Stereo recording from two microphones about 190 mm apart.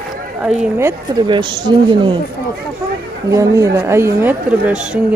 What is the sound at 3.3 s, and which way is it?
Speech, 15° right (ahead or behind).